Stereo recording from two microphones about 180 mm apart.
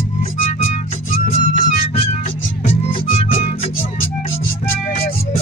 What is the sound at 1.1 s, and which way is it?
Music, 45° left (ahead or behind).